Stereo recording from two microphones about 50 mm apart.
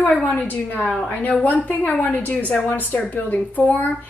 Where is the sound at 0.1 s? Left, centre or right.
Centre.